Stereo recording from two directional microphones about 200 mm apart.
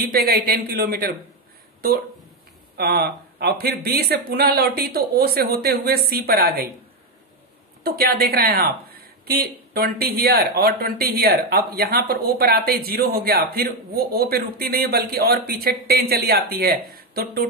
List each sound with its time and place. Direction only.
0.1 s speech: 50° right (ahead or behind)
2.8 s speech: 50° right (ahead or behind)
7.8 s speech: 50° right (ahead or behind)